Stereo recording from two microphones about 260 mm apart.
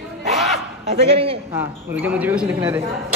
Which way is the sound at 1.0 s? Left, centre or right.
Right.